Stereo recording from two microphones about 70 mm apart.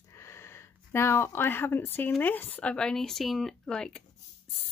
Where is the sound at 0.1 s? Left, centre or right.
Left.